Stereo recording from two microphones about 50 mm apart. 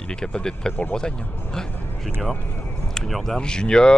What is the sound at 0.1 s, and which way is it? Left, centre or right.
Speech, centre.